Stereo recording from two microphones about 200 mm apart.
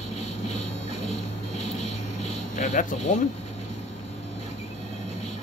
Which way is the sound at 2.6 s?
35° left (ahead or behind).